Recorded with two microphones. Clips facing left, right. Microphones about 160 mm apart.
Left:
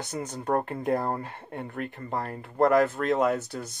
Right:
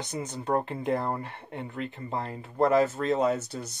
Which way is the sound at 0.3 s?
55° left (ahead or behind).